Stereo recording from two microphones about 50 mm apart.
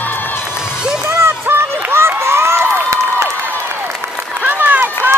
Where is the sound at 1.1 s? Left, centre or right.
Right.